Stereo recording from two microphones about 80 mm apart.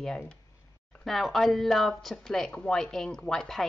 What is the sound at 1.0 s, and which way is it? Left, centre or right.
A woman's voice, centre.